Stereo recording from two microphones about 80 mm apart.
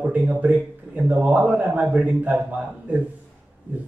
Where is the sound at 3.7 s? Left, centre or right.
Centre.